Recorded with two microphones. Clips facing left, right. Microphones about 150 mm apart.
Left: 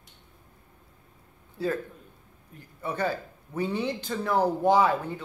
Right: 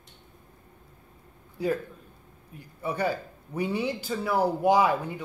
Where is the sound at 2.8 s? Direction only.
10° right (ahead or behind).